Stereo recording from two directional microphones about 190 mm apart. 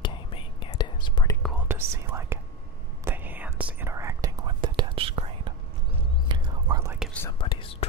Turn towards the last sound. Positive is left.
turn(degrees=25)  # may be behind; listen again after turning